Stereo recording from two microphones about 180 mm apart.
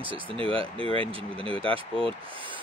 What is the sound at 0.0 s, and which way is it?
Speech, 30° right (ahead or behind).